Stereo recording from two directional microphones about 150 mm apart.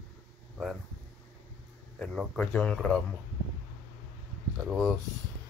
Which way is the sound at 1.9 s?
5° left (ahead or behind).